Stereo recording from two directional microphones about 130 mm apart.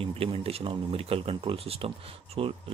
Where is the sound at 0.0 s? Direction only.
45° right (ahead or behind).